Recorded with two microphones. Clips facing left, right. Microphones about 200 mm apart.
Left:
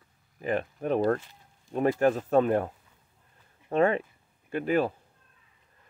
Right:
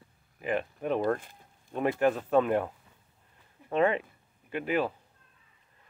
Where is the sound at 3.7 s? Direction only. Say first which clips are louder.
Left 2 dB; 40° left (ahead or behind).